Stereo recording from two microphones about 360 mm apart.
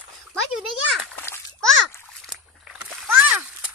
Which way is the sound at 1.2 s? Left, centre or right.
Centre.